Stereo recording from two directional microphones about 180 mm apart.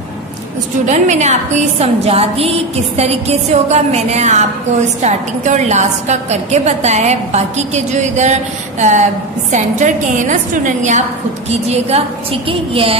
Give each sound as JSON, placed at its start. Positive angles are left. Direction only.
{"t": 0.8, "sound": "a woman's voice", "side_deg": -40}